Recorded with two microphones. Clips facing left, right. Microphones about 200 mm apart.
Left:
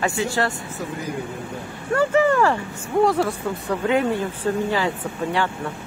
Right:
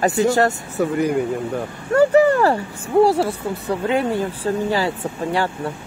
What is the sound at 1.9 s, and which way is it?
Speech, 40° right (ahead or behind).